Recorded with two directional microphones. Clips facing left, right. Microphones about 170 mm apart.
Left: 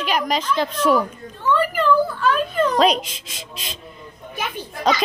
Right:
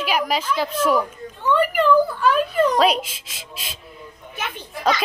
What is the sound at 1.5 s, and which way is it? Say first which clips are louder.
A child's voice: right 1 dB; 15° right (ahead or behind).